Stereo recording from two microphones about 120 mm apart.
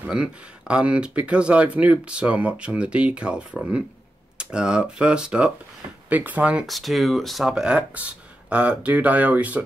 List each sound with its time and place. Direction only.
0.0 s speech: 10° right (ahead or behind)